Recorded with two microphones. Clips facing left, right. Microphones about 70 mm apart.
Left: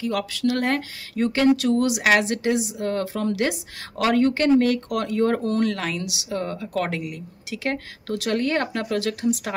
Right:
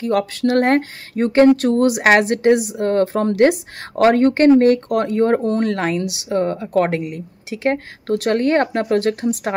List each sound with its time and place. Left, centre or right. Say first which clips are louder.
0.0 s speech: right 6 dB; right